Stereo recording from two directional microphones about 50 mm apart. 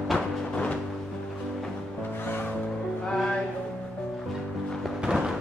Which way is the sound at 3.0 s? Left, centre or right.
Centre.